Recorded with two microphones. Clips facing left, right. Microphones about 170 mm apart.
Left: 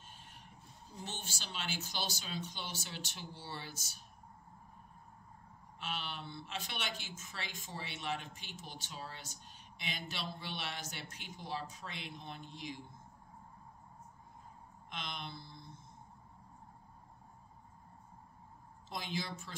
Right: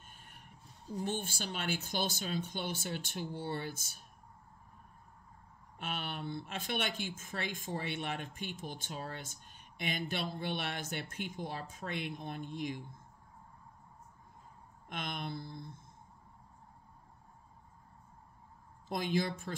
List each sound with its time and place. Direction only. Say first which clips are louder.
0.1 s a sound: left 1 dB; 50° right (ahead or behind)
1.0 s speech: right 8 dB; 50° right (ahead or behind)
5.8 s speech: right 3 dB; 50° right (ahead or behind)
14.9 s speech: right 5 dB; 50° right (ahead or behind)
18.9 s speech: right 8 dB; 50° right (ahead or behind)